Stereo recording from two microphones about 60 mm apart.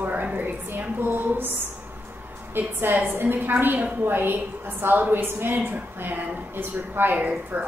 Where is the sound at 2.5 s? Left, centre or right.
Right.